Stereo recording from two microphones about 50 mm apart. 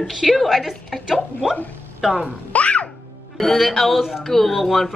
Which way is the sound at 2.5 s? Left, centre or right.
Left.